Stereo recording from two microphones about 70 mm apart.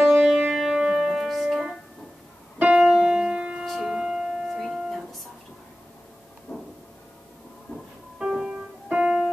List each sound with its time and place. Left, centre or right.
0.1 s music: centre
2.8 s music: centre
3.6 s music: centre
6.5 s a sound: left
7.7 s music: centre
8.2 s music: centre